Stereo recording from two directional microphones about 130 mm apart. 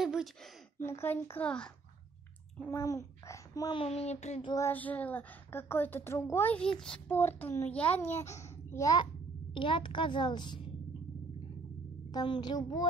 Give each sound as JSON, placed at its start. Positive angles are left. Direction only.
{"t": 0.0, "sound": "a sound", "side_deg": -5}
{"t": 0.8, "sound": "a child's voice", "side_deg": 20}
{"t": 2.8, "sound": "a child's voice", "side_deg": 25}
{"t": 3.7, "sound": "speech", "side_deg": 50}
{"t": 4.6, "sound": "a child's voice", "side_deg": 15}
{"t": 7.2, "sound": "a child's voice", "side_deg": 15}
{"t": 9.5, "sound": "a child's voice", "side_deg": 40}
{"t": 12.1, "sound": "a child's voice", "side_deg": 30}